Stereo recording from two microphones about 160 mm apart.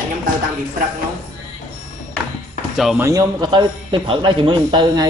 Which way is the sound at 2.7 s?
Centre (ahead or behind).